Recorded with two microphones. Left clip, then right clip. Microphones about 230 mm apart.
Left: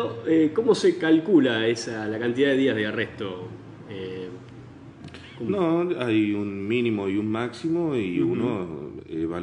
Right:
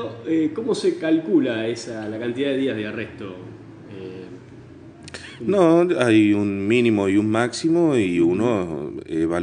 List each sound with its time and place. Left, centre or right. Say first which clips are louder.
0.0 s a man's voice: left 1 dB; left
5.5 s a man's voice: right 8 dB; right